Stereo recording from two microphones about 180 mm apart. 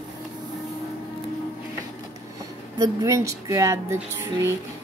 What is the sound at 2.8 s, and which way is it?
Speech, 15° right (ahead or behind).